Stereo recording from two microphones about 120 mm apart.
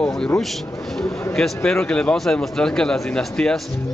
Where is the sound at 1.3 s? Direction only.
5° left (ahead or behind).